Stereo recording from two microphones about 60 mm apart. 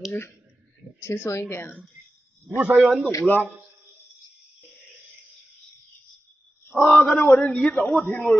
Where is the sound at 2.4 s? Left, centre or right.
Right.